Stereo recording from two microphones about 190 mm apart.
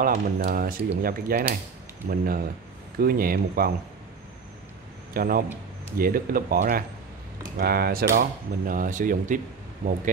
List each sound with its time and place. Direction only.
0.0 s speech: 45° right (ahead or behind)
5.1 s a man's voice: 50° right (ahead or behind)